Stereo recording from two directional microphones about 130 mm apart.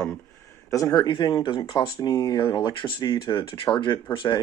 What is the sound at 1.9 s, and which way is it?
Speech, 30° left (ahead or behind).